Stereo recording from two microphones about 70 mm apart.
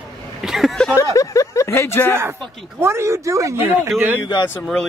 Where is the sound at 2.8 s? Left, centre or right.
Right.